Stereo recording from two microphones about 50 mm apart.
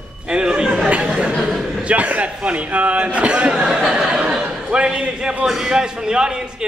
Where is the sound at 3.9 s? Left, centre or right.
Centre.